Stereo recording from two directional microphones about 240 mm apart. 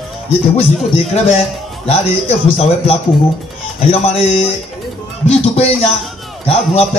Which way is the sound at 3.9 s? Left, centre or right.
Left.